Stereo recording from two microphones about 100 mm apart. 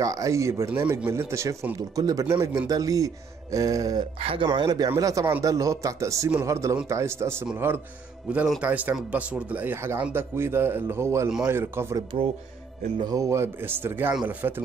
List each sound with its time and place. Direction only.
0.0 s speech: 35° right (ahead or behind)
4.2 s speech: 70° right (ahead or behind)
4.6 s speech: 40° right (ahead or behind)
11.2 s a man's voice: 5° right (ahead or behind)
11.5 s speech: 25° right (ahead or behind)
13.0 s speech: 35° right (ahead or behind)